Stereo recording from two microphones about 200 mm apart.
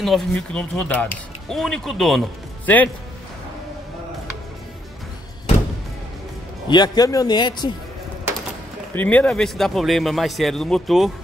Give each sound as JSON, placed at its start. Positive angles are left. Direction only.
{"t": 0.0, "sound": "speech", "side_deg": 0}
{"t": 6.7, "sound": "speech", "side_deg": 20}
{"t": 8.9, "sound": "speech", "side_deg": 10}